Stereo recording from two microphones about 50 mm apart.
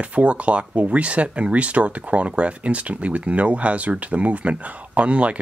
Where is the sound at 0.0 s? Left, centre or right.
Right.